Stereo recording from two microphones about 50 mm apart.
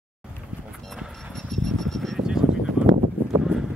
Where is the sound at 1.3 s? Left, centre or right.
Centre.